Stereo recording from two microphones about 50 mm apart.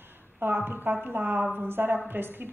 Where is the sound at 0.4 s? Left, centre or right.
Right.